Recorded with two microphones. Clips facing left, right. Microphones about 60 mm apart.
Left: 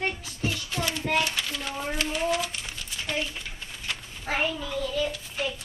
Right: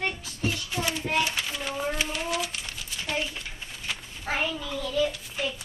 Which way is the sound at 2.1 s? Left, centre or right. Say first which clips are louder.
Left 3 dB; centre.